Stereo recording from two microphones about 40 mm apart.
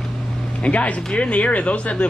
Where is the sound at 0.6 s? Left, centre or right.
Left.